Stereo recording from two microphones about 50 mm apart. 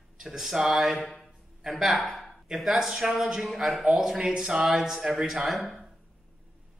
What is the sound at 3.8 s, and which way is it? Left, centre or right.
Speech, centre.